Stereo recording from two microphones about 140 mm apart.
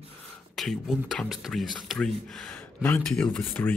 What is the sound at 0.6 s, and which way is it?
Speech, centre (ahead or behind).